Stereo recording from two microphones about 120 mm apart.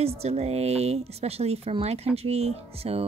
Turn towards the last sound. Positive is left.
turn(degrees=-55)  # may be behind; listen again after turning